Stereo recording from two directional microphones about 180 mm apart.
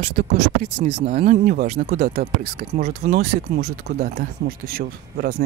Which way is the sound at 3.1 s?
45° right (ahead or behind).